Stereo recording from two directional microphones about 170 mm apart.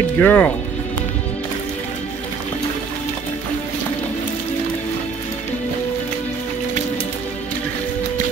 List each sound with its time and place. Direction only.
0.2 s speech: 10° left (ahead or behind)